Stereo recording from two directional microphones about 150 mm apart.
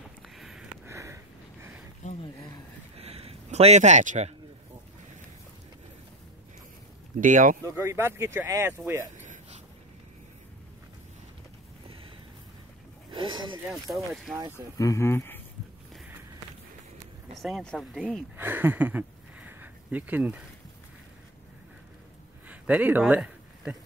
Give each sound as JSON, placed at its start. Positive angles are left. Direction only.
{"t": 0.4, "sound": "sniff", "side_deg": 0}
{"t": 0.8, "sound": "sniff", "side_deg": -20}
{"t": 3.0, "sound": "a sound", "side_deg": -40}
{"t": 7.2, "sound": "speech", "side_deg": -60}
{"t": 7.6, "sound": "speech", "side_deg": -15}
{"t": 13.1, "sound": "a sound", "side_deg": -30}
{"t": 13.9, "sound": "speech", "side_deg": 0}
{"t": 14.8, "sound": "speech", "side_deg": 20}
{"t": 17.4, "sound": "speech", "side_deg": 0}
{"t": 18.3, "sound": "speech", "side_deg": -15}
{"t": 22.5, "sound": "a sound", "side_deg": -10}